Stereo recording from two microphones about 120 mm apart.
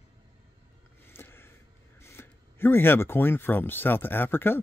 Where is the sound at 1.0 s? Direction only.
20° left (ahead or behind).